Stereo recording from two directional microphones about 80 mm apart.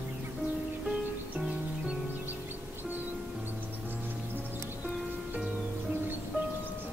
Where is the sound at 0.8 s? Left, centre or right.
Centre.